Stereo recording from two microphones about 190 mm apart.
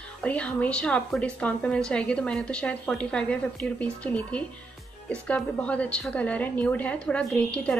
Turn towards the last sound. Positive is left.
turn(degrees=5)  # may be behind; listen again after turning